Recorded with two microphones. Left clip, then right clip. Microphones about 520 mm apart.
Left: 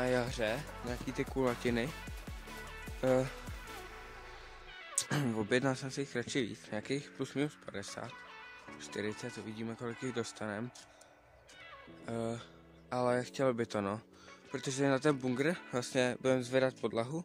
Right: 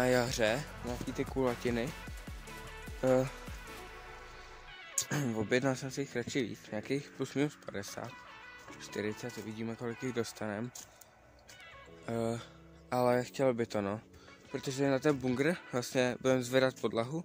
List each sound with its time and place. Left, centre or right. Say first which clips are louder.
0.0 s speech: right 4 dB; left
3.0 s speech: right 2 dB; left
4.9 s speech: even; left
12.1 s speech: right 3 dB; left